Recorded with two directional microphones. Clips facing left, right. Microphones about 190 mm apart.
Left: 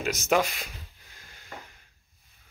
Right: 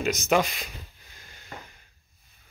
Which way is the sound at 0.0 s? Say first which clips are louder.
Right 1 dB; 5° left (ahead or behind).